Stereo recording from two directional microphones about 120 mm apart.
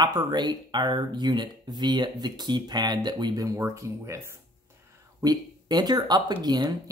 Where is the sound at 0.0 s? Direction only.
35° right (ahead or behind).